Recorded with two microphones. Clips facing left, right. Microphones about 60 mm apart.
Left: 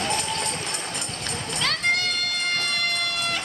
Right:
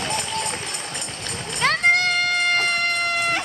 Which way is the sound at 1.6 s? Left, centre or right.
Right.